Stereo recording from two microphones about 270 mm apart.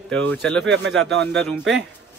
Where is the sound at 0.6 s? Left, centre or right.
Right.